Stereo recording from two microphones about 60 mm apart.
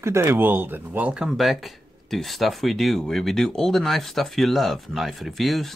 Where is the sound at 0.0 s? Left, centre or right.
Right.